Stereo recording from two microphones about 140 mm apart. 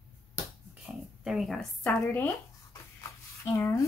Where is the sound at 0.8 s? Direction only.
5° right (ahead or behind).